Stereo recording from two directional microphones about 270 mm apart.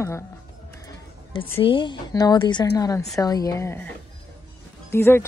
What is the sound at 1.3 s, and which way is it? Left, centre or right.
A woman's voice, centre.